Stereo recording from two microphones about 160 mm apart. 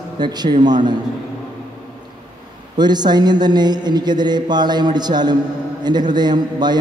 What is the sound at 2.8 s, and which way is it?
Speech, 25° right (ahead or behind).